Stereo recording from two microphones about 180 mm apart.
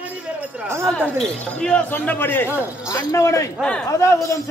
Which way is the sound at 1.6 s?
5° left (ahead or behind).